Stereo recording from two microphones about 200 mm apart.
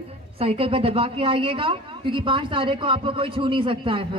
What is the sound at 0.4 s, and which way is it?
A woman's voice, 30° right (ahead or behind).